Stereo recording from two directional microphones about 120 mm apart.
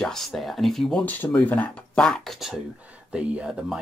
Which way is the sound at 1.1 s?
15° left (ahead or behind).